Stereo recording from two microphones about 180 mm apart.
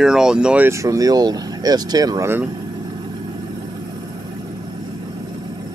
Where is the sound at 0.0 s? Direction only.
5° right (ahead or behind).